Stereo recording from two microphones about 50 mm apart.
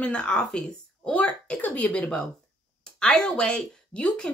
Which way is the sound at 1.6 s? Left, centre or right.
Left.